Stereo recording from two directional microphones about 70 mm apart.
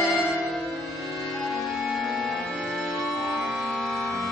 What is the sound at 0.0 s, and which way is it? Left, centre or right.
Music, centre.